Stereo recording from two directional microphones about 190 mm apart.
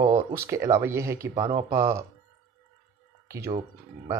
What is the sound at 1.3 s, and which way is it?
Speech, 30° right (ahead or behind).